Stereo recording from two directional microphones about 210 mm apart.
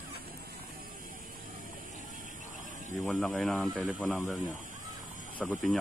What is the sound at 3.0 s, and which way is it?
Speech, 5° left (ahead or behind).